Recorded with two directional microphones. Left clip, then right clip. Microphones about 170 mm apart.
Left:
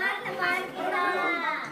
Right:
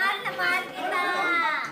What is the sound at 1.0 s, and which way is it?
Children playing, 35° right (ahead or behind).